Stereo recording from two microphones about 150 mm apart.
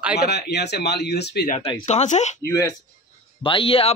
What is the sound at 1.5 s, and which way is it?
Speech, 35° left (ahead or behind).